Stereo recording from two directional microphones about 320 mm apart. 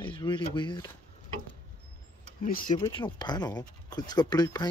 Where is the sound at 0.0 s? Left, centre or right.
Centre.